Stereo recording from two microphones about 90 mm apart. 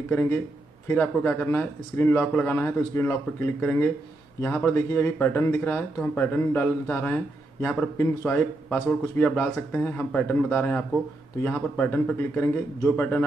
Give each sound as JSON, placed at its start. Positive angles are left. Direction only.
{"t": 0.1, "sound": "speech", "side_deg": 20}